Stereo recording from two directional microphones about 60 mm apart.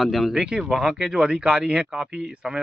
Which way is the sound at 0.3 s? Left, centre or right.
Centre.